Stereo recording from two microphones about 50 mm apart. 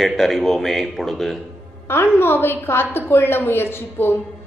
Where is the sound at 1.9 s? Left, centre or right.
Left.